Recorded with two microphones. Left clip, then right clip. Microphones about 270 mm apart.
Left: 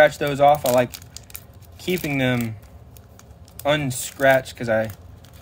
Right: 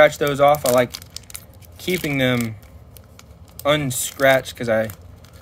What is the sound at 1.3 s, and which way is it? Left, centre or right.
Keys jangling, centre.